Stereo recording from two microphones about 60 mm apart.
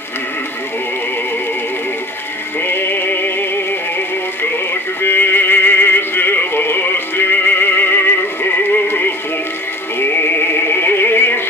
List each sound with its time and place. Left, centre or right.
2.7 s synthetic singing: left
5.0 s music: left
9.9 s synthetic singing: left